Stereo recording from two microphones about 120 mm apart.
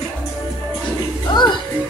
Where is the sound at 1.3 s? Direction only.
40° left (ahead or behind).